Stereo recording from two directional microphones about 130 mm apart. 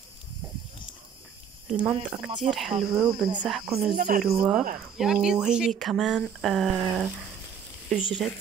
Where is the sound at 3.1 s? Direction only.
35° right (ahead or behind).